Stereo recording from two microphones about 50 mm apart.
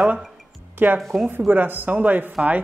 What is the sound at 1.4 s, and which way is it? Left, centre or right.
Speech, right.